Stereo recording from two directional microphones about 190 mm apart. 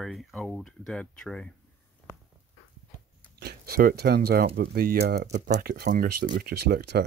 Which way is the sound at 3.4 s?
55° right (ahead or behind).